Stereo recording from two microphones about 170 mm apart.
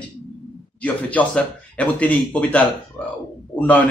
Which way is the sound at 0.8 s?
10° left (ahead or behind).